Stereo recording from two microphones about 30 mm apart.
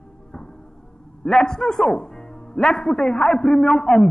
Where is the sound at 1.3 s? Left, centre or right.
Centre.